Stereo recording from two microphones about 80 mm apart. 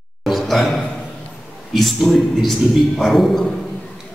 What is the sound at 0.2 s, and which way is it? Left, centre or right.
A man's voice, centre.